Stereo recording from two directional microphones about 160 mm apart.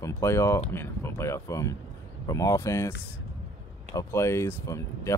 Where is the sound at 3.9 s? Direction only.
15° left (ahead or behind).